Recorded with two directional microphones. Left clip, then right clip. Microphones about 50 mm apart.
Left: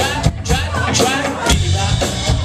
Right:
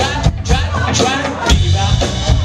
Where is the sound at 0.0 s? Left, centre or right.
Centre.